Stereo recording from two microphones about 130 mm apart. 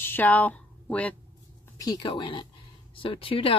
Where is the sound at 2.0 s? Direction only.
40° left (ahead or behind).